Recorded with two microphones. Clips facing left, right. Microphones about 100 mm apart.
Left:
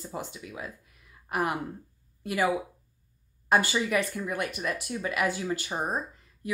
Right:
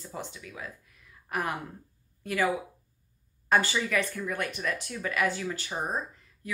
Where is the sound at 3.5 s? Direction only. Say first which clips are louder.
Left 1 dB; 15° left (ahead or behind).